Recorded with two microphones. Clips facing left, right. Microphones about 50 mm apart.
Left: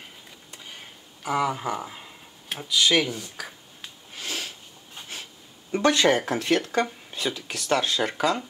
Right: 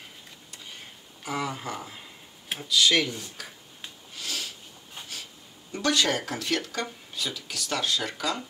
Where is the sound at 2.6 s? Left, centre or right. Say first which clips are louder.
Left 1 dB; centre.